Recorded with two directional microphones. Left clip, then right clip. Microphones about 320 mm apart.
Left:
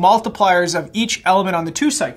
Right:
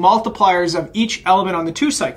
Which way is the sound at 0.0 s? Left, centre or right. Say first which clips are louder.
Even; left.